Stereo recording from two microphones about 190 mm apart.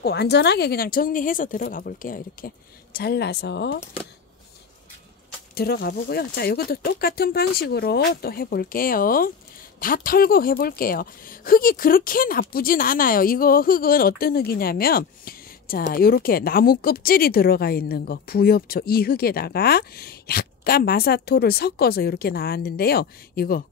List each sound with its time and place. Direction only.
0.0 s speech: 60° left (ahead or behind)
5.5 s speech: 55° left (ahead or behind)